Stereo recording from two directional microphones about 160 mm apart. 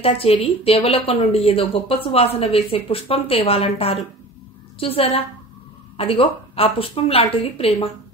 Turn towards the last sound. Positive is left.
turn(degrees=35)  # may be behind; listen again after turning